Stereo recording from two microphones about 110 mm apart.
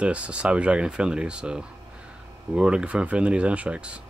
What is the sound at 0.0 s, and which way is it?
Speech, 10° right (ahead or behind).